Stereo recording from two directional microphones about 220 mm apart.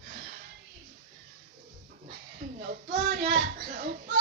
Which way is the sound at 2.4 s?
40° right (ahead or behind).